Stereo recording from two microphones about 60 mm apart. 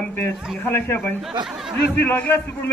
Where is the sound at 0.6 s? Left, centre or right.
Left.